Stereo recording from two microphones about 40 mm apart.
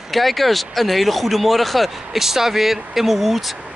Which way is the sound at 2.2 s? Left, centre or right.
Centre.